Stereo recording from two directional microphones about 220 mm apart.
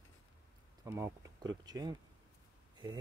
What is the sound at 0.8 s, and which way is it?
Speech, 10° right (ahead or behind).